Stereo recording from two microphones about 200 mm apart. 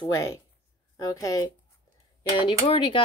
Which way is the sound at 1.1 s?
15° left (ahead or behind).